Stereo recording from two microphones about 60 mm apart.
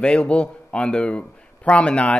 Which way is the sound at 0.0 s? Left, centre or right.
Centre.